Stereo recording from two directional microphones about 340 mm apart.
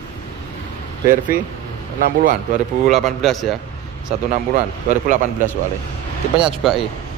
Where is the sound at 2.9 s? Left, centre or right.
Centre.